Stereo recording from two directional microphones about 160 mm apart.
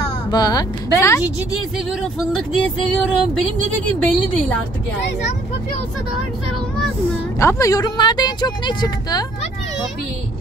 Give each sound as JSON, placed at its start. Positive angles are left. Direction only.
{"t": 0.3, "sound": "speech", "side_deg": 25}
{"t": 2.3, "sound": "speech", "side_deg": 5}
{"t": 7.3, "sound": "speech", "side_deg": 20}